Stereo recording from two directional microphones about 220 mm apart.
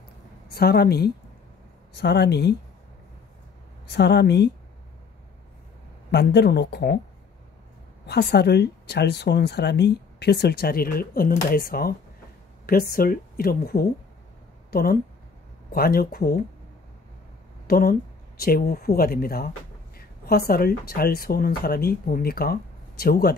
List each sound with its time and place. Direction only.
0.5 s speech: 45° left (ahead or behind)
3.8 s speech: 50° left (ahead or behind)
6.1 s speech: 50° left (ahead or behind)
8.1 s speech: 45° left (ahead or behind)
17.6 s speech: 45° left (ahead or behind)